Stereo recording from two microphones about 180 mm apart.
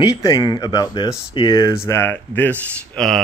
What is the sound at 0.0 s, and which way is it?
Speech, 20° left (ahead or behind).